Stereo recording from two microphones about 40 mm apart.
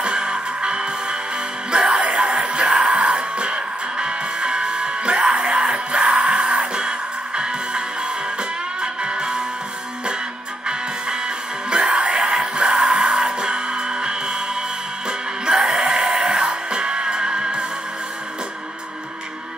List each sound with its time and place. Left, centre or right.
0.0 s music: right
8.8 s music: right
11.7 s music: centre